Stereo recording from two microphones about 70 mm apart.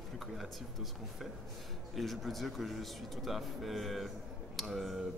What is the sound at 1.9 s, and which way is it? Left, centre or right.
Speech, centre.